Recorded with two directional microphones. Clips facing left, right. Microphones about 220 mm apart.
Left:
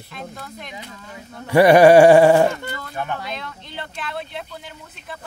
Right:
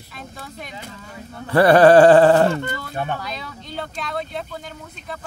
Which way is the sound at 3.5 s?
Centre (ahead or behind).